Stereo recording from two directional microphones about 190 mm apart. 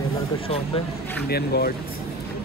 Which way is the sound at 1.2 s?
55° left (ahead or behind).